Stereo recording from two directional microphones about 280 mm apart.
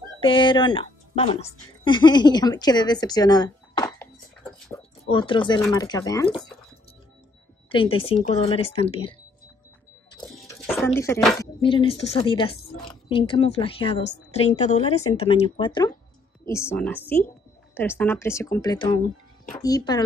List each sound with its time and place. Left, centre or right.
0.2 s a woman's voice: centre
4.5 s a sound: centre
5.0 s a woman's voice: centre
7.7 s speech: centre
10.2 s a sound: centre
11.0 s speech: centre
11.3 s a woman's voice: centre